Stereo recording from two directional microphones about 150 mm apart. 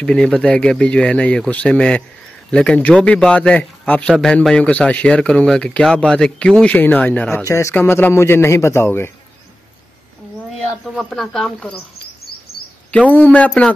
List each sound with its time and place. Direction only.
0.0 s a man's voice: 5° left (ahead or behind)
11.0 s speech: centre (ahead or behind)
13.1 s a man's voice: 10° left (ahead or behind)